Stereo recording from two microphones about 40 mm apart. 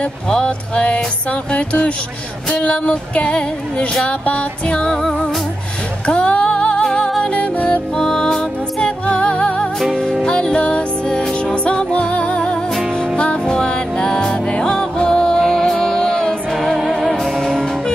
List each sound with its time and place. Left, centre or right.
0.5 s music: left
6.0 s music: left
6.8 s music: centre
7.2 s music: left
7.9 s music: centre
8.8 s music: left
16.9 s music: centre